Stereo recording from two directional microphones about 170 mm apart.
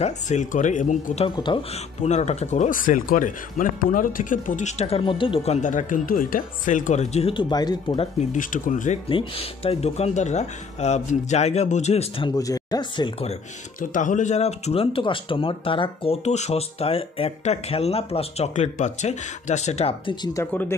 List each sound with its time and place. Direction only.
0.0 s speech: 45° left (ahead or behind)
1.3 s speech: 25° left (ahead or behind)
2.0 s speech: 40° left (ahead or behind); by 8.1 s 25° left (ahead or behind)
8.3 s speech: 50° left (ahead or behind)
9.1 s speech: 35° left (ahead or behind)
12.3 s speech: 20° left (ahead or behind)
13.7 s speech: 50° left (ahead or behind)
20.3 s speech: 15° left (ahead or behind)